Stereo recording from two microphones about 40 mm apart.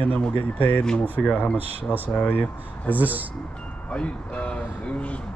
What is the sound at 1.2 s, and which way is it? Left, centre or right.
Speech, left.